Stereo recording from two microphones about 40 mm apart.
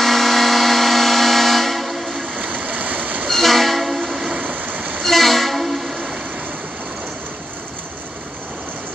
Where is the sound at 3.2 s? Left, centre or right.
Centre.